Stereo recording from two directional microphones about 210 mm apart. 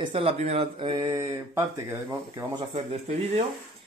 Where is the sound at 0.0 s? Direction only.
25° right (ahead or behind).